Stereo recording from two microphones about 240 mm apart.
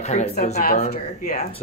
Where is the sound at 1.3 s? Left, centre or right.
Left.